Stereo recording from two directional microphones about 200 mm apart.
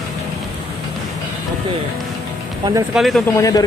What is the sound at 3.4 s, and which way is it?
Speech, 15° left (ahead or behind).